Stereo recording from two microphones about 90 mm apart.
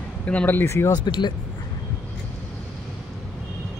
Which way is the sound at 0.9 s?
55° left (ahead or behind).